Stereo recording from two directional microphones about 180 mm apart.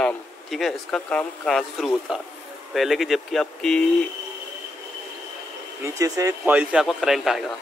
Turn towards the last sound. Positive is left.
turn(degrees=0)  # may be behind; listen again after turning